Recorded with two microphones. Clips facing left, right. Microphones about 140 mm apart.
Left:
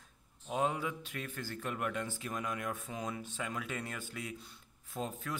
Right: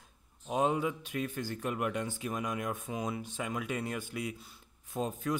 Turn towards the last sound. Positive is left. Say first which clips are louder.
# right 6 dB
turn(degrees=-15)  # may be behind; listen again after turning